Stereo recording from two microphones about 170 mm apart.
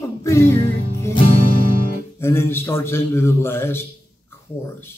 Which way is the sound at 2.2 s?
15° left (ahead or behind).